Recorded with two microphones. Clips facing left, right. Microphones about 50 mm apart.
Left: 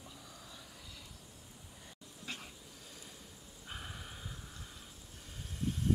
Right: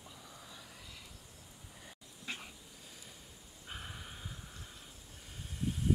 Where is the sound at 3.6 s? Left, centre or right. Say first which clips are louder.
Even; centre.